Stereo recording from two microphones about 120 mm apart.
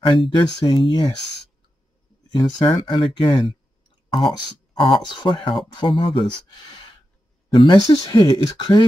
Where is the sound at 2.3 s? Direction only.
40° left (ahead or behind).